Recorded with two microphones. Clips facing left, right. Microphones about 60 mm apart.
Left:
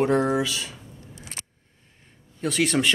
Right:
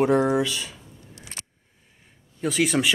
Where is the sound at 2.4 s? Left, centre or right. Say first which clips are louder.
Even; centre.